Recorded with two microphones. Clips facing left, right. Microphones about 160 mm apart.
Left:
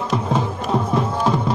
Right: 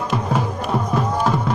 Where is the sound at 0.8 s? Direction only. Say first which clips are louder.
Right 1 dB; 5° left (ahead or behind).